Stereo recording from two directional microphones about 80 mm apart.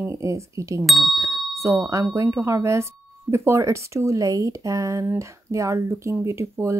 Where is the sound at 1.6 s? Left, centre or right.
Right.